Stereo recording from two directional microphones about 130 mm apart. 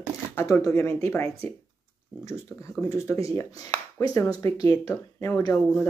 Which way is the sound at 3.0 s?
25° left (ahead or behind).